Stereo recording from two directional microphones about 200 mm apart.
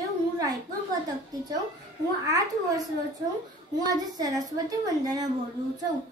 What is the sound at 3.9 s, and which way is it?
Child singing, 20° right (ahead or behind).